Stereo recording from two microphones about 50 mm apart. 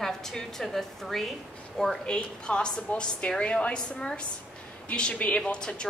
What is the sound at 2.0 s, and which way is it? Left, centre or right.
A woman's voice, centre.